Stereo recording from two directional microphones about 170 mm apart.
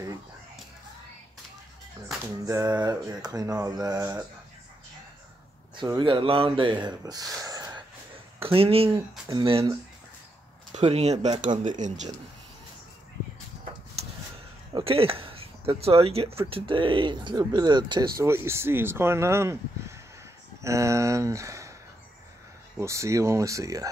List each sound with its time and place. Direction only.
2.4 s speech: 20° right (ahead or behind)
5.8 s speech: 25° right (ahead or behind)
7.1 s gasp: 20° right (ahead or behind)
8.4 s speech: 35° right (ahead or behind)
10.7 s speech: 40° right (ahead or behind)
14.7 s speech: 35° right (ahead or behind)
18.2 s speech: 15° right (ahead or behind)
22.8 s speech: 15° right (ahead or behind)